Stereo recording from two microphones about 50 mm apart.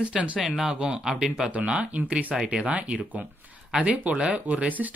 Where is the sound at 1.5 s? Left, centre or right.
Right.